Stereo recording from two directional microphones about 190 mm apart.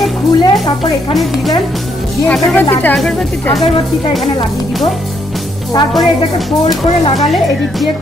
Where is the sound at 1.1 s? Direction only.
Centre (ahead or behind).